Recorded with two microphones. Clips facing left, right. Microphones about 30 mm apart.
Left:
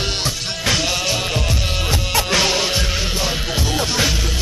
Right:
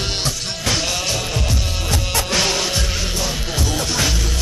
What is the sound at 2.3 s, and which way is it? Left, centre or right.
Music, centre.